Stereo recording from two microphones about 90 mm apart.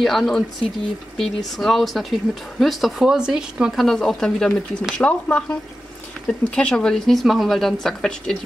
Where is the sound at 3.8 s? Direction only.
5° left (ahead or behind).